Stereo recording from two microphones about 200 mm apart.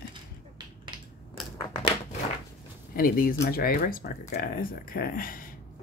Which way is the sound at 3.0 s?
45° left (ahead or behind).